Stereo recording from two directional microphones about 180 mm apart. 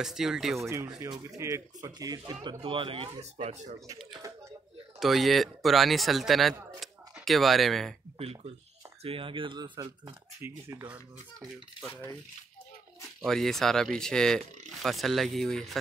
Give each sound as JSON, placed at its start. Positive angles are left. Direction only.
{"t": 0.0, "sound": "speech", "side_deg": 0}
{"t": 0.6, "sound": "speech", "side_deg": -15}
{"t": 4.1, "sound": "a sound", "side_deg": -20}
{"t": 5.0, "sound": "speech", "side_deg": 0}
{"t": 9.0, "sound": "speech", "side_deg": -30}
{"t": 13.2, "sound": "speech", "side_deg": 0}